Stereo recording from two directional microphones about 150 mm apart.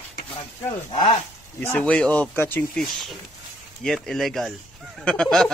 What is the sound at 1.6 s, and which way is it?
Speech, 10° left (ahead or behind).